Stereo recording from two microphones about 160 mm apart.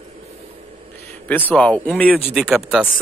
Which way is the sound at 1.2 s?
10° left (ahead or behind).